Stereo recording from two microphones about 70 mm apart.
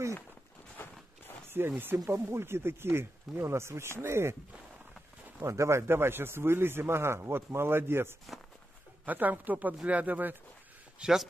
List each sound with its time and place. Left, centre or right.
0.8 s walk: left
1.7 s a woman's voice: right
2.0 s a man's voice: right
5.4 s a man's voice: right
9.0 s a woman's voice: right
11.0 s a man's voice: centre